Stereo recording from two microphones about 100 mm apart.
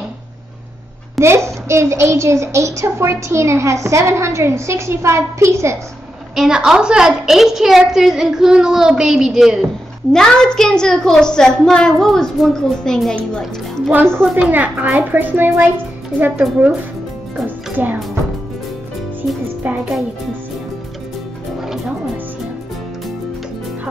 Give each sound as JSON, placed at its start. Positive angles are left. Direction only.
{"t": 1.2, "sound": "a child's voice", "side_deg": -25}
{"t": 6.3, "sound": "a woman's voice", "side_deg": -5}
{"t": 14.3, "sound": "a child's voice", "side_deg": -20}
{"t": 17.8, "sound": "a child's voice", "side_deg": -20}
{"t": 19.6, "sound": "music", "side_deg": -15}